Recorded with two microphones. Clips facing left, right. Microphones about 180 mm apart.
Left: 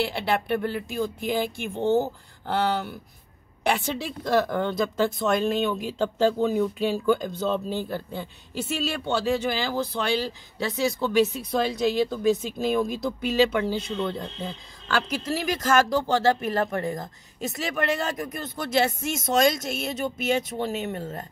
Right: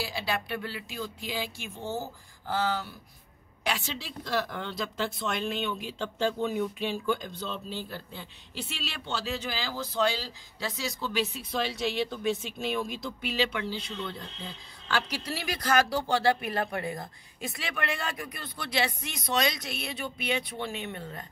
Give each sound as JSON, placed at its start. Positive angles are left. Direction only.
{"t": 0.0, "sound": "a woman's voice", "side_deg": 60}